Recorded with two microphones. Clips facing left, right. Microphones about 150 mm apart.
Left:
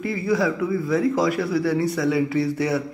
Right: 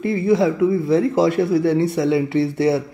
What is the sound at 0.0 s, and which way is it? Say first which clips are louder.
Speech: right 5 dB; 25° right (ahead or behind).